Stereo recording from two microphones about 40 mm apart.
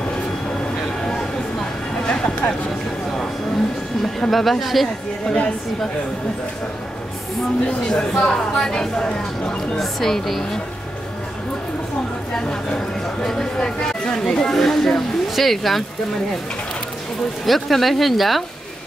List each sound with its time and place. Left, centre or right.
2.0 s a sound: left
4.3 s speech: centre
5.2 s a woman's voice: left
7.9 s speech: centre
9.8 s speech: centre
12.4 s speech: centre
17.5 s speech: centre